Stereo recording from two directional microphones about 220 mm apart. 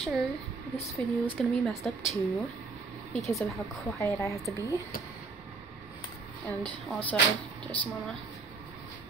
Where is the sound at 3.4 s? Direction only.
15° left (ahead or behind).